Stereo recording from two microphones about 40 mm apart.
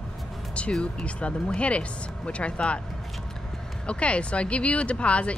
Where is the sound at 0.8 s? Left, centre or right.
Left.